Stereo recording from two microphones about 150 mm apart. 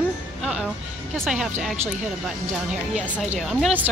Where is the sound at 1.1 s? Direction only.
Centre (ahead or behind).